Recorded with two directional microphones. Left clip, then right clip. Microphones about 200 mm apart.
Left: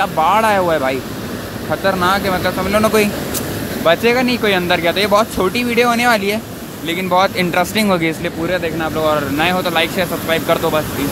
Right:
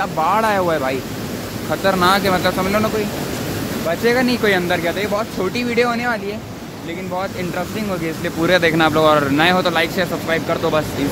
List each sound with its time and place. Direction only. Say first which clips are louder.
0.0 s speech: left 4 dB; 5° left (ahead or behind)
4.0 s speech: left 2 dB; centre (ahead or behind); by 8.1 s 25° left (ahead or behind)
8.5 s speech: right 6 dB; 15° right (ahead or behind); by 10.8 s 5° left (ahead or behind)